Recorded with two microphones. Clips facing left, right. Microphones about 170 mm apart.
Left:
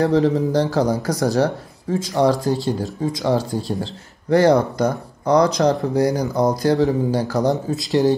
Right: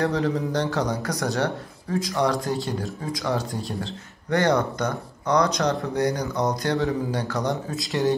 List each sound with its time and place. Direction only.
0.0 s speech: 30° left (ahead or behind)